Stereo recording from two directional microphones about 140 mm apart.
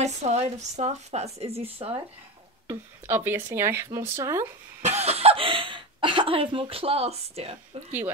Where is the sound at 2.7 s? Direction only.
15° right (ahead or behind).